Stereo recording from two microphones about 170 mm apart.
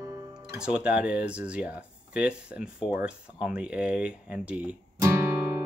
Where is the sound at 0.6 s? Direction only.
5° right (ahead or behind).